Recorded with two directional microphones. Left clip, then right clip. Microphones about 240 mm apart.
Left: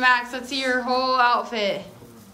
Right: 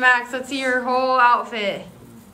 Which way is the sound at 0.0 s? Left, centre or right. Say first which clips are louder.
Right 2 dB; centre.